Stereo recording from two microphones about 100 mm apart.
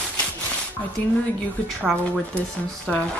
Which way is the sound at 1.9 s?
5° left (ahead or behind).